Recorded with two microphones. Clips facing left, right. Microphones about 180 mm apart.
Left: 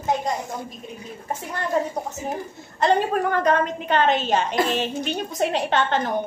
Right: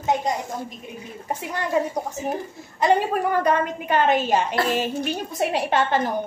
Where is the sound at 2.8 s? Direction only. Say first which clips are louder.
Even; 10° right (ahead or behind).